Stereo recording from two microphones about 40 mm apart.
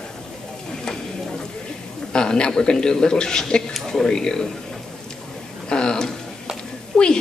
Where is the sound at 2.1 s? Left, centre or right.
Left.